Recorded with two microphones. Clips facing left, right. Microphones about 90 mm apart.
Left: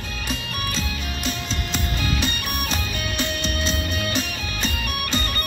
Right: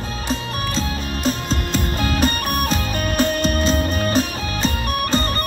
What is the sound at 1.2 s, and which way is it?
Music, 45° right (ahead or behind).